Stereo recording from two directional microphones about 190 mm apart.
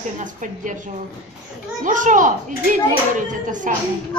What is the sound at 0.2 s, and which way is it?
Speech, 40° right (ahead or behind).